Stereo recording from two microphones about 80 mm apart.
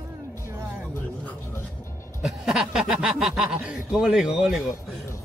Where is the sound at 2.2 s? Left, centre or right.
Centre.